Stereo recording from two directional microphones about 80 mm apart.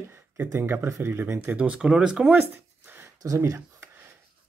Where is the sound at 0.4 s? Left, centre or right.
Right; by 2.3 s centre.